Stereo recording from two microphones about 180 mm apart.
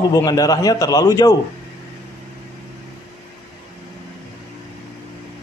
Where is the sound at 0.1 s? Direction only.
20° left (ahead or behind).